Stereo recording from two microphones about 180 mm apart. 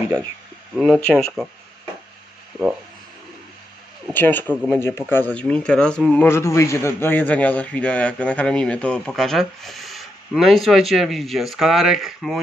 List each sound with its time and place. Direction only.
0.7 s a man's voice: centre (ahead or behind)
4.1 s a man's voice: 10° left (ahead or behind)